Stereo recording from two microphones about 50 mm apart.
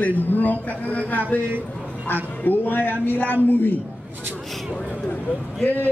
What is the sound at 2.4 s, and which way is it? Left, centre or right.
A man's voice, left.